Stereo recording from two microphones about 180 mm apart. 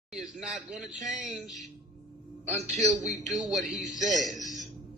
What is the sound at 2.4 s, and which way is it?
Speech, 40° right (ahead or behind).